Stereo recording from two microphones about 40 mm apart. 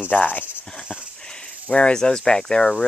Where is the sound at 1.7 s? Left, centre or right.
Left.